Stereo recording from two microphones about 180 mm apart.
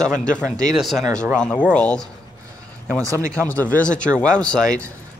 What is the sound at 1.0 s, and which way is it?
Speech, 15° right (ahead or behind).